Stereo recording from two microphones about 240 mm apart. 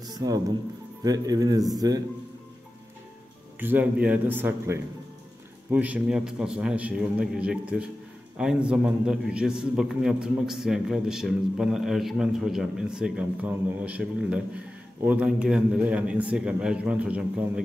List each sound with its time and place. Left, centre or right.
0.0 s music: centre
1.0 s a man's voice: centre
3.5 s a man's voice: centre